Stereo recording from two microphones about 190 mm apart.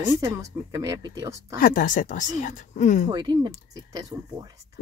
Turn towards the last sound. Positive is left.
turn(degrees=-20)  # may be behind; listen again after turning